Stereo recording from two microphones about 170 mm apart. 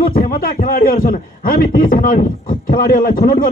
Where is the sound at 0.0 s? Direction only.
55° left (ahead or behind).